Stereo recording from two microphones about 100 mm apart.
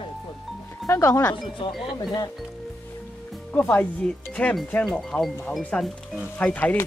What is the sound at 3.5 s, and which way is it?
Speech, 15° left (ahead or behind).